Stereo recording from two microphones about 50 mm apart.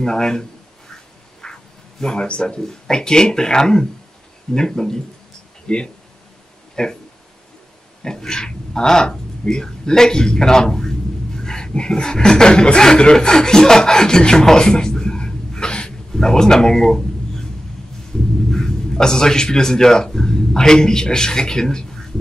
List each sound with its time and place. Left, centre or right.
0.0 s speech: centre
1.4 s speech: centre
6.7 s a sound: centre
8.0 s speech: centre
18.5 s a man's voice: centre